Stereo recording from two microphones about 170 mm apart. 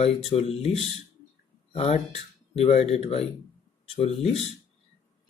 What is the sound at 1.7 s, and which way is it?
Speech, 35° left (ahead or behind).